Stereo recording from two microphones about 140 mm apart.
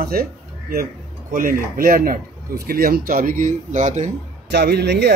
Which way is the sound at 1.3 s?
85° right.